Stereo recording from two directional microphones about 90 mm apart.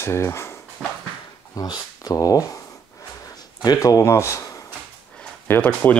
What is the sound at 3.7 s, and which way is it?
Speech, 40° left (ahead or behind).